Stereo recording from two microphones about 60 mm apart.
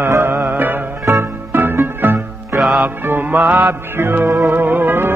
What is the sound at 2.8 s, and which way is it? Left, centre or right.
Music, right.